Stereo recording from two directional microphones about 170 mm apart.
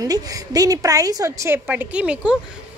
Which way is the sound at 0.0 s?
20° right (ahead or behind).